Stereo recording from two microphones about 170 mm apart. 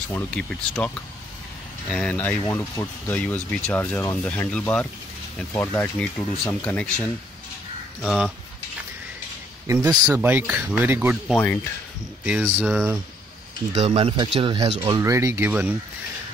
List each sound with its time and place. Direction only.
0.1 s speech: 5° left (ahead or behind)
9.7 s speech: 20° right (ahead or behind)
11.2 s speech: 10° left (ahead or behind)
12.3 s speech: 10° right (ahead or behind)
13.7 s speech: 35° right (ahead or behind)
15.0 s speech: 20° right (ahead or behind)